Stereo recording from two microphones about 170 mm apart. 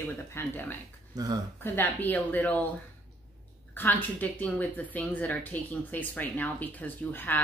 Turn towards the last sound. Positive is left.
turn(degrees=10)  # may be behind; listen again after turning